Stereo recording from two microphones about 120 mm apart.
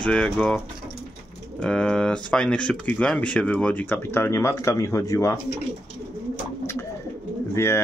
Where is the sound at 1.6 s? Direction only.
5° left (ahead or behind); by 5.4 s 25° left (ahead or behind).